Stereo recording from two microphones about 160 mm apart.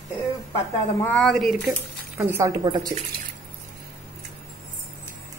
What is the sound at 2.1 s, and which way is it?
Speech, 20° right (ahead or behind).